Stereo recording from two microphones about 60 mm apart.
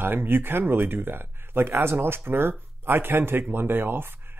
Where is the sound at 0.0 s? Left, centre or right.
Right.